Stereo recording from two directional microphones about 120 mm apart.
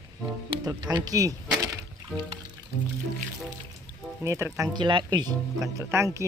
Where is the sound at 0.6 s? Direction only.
35° right (ahead or behind).